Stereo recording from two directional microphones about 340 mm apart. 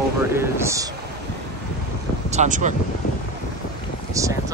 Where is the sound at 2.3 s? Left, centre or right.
Right.